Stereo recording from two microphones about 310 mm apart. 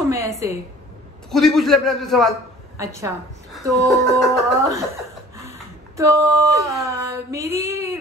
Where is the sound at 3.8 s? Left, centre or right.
Centre.